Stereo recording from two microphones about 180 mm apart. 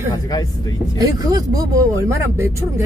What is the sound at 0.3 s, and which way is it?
Speech, 20° left (ahead or behind).